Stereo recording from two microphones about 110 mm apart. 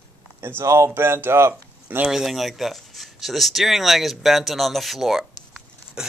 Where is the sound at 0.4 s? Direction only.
25° right (ahead or behind).